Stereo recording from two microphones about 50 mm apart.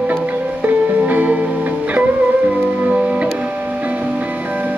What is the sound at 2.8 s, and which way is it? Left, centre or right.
Music, right.